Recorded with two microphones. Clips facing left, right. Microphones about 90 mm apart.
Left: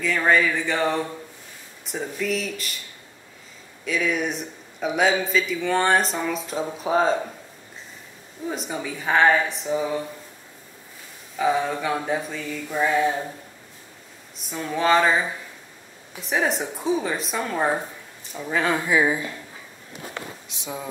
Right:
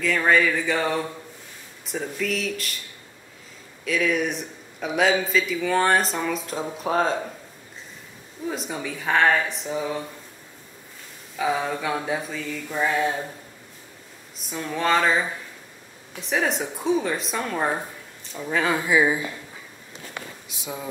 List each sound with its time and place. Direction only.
0.0 s a man's voice: centre (ahead or behind)
3.8 s a man's voice: centre (ahead or behind)
8.5 s a man's voice: centre (ahead or behind)
11.3 s a man's voice: centre (ahead or behind)
14.5 s a man's voice: centre (ahead or behind)